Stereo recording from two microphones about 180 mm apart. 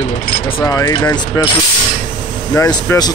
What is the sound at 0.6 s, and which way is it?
Speech, 20° left (ahead or behind).